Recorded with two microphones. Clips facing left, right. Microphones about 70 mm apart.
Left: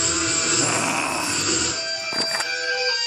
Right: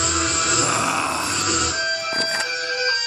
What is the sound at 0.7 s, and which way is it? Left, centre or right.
Grunt, centre.